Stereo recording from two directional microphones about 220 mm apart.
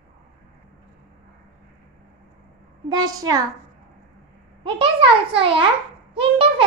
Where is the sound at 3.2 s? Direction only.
15° right (ahead or behind).